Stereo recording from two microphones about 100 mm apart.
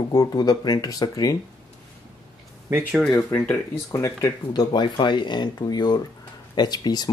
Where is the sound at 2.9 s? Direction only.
Centre (ahead or behind).